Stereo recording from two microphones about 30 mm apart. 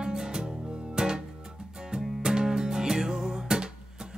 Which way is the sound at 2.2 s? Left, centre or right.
Right.